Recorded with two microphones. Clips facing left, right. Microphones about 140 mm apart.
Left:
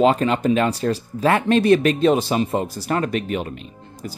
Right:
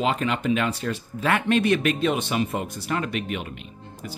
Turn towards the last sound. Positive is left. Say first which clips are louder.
# left 4 dB
turn(degrees=35)  # may be behind; listen again after turning